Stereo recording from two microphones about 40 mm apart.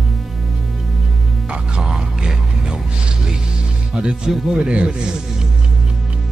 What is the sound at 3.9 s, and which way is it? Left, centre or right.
Speech, right.